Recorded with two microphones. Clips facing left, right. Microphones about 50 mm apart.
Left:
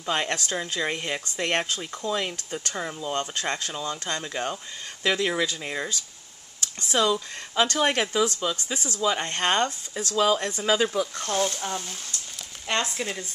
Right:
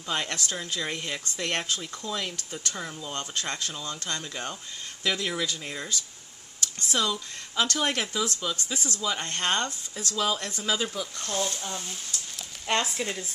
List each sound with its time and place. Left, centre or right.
0.0 s speech: left
10.8 s speech: left
12.6 s speech: centre